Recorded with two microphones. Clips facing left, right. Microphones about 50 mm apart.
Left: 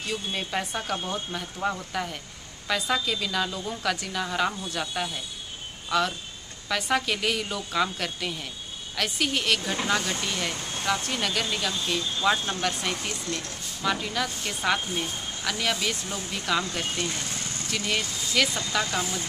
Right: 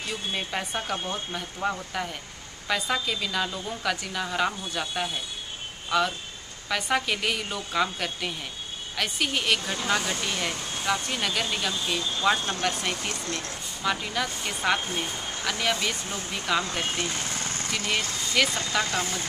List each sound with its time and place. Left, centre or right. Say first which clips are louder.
0.1 s a woman's voice: left 1 dB; centre
13.1 s speech: even; right
13.8 s speech: even; centre
16.8 s speech: right 1 dB; right
18.4 s a woman's voice: even; centre
18.9 s speech: even; centre